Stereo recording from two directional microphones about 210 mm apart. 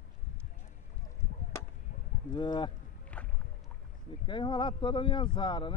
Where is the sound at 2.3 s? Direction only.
20° left (ahead or behind).